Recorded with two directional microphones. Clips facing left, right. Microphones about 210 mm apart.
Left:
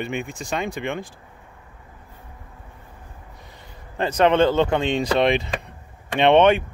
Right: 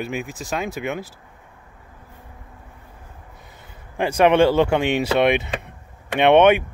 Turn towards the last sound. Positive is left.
turn(degrees=-10)  # may be behind; listen again after turning